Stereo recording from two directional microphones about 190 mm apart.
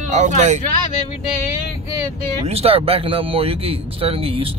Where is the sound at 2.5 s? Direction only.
30° right (ahead or behind).